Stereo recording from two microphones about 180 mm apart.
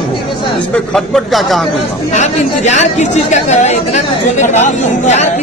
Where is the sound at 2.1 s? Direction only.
40° left (ahead or behind).